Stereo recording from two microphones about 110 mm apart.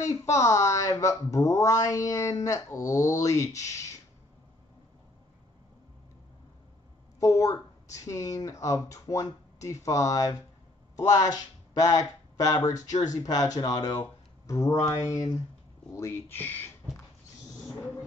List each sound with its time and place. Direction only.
0.0 s speech: 30° left (ahead or behind)
7.2 s speech: 30° left (ahead or behind)